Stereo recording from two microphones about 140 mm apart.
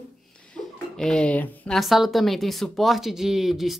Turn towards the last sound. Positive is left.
turn(degrees=0)  # may be behind; listen again after turning